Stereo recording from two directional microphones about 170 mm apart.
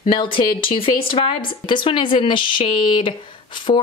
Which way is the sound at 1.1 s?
30° left (ahead or behind).